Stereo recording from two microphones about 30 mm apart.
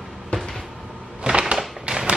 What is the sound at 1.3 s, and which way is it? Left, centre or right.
Cupboard open or close, right.